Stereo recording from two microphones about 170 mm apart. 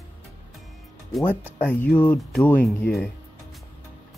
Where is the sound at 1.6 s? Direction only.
10° left (ahead or behind).